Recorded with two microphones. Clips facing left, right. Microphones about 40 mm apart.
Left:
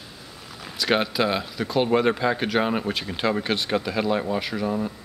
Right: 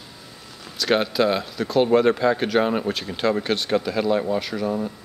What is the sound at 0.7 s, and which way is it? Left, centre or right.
Speech, centre.